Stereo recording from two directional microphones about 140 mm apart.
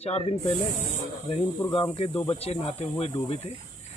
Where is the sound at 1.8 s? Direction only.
40° left (ahead or behind).